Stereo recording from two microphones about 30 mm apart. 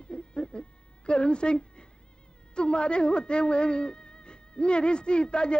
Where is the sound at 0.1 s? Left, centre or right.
Left.